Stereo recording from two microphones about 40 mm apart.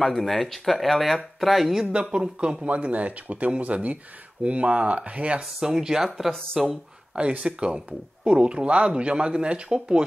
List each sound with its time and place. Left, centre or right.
0.0 s speech: centre
1.9 s speech: right
2.7 s speech: right
5.7 s speech: centre
7.4 s speech: right